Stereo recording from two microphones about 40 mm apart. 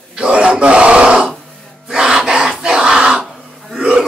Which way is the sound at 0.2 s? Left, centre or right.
Right.